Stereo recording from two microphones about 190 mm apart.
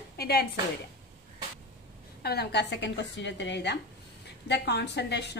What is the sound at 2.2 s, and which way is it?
A woman's voice, 60° left (ahead or behind).